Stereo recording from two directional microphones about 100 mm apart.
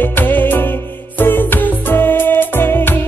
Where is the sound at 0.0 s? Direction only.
20° left (ahead or behind).